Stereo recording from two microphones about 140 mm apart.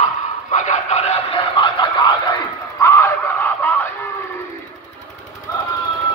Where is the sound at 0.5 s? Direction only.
55° left (ahead or behind); by 2.1 s 40° left (ahead or behind).